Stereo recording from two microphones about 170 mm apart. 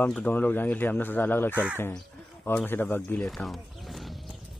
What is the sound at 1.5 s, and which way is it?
Speech, 10° right (ahead or behind).